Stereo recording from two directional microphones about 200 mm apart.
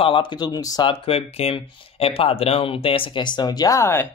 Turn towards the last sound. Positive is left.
turn(degrees=15)  # may be behind; listen again after turning